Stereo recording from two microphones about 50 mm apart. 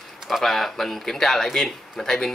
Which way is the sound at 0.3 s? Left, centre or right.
Centre.